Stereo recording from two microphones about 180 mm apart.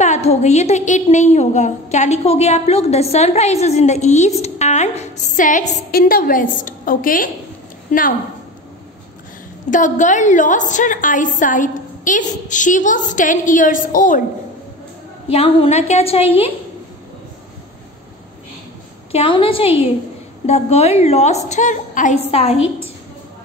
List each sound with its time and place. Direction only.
0.0 s a woman's voice: 40° left (ahead or behind)
9.7 s a woman's voice: 45° left (ahead or behind)
15.2 s a woman's voice: 30° left (ahead or behind)
19.1 s a woman's voice: 30° left (ahead or behind)